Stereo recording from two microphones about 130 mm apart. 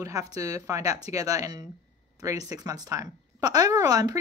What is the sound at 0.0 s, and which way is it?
A woman's voice, 25° right (ahead or behind).